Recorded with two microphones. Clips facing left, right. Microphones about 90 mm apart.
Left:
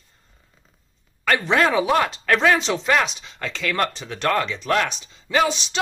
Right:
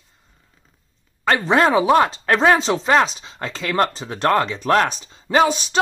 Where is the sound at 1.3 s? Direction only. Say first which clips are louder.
Right 3 dB; 30° right (ahead or behind).